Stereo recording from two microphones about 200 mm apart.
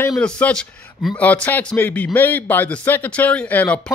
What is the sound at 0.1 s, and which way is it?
Speech, 5° left (ahead or behind).